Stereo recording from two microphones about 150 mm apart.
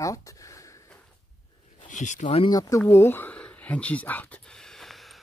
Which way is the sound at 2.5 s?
25° left (ahead or behind).